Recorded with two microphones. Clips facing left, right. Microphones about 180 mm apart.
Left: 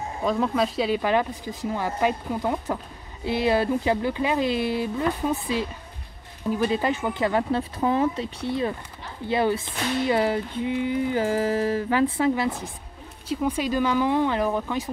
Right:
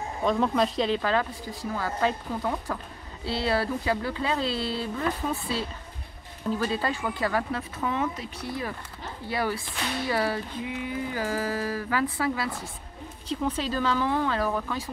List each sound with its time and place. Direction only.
0.2 s speech: centre (ahead or behind)
6.6 s a sound: 20° left (ahead or behind)
13.3 s speech: 10° left (ahead or behind)